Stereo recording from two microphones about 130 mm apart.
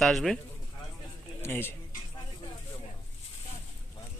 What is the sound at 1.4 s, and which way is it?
Speech, 15° left (ahead or behind).